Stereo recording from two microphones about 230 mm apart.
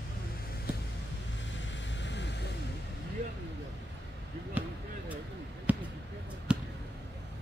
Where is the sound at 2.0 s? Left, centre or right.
Left.